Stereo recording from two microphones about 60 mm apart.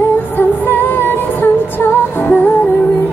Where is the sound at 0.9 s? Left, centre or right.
Left.